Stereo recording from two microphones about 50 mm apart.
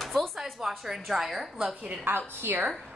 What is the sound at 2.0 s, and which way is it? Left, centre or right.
Speech, right.